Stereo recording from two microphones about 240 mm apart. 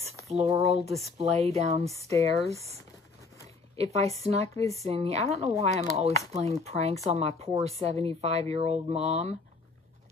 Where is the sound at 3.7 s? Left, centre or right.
Right.